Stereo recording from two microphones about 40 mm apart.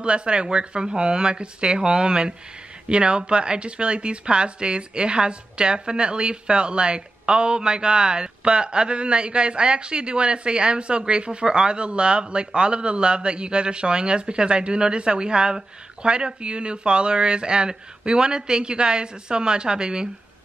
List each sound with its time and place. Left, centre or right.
0.0 s a woman's voice: right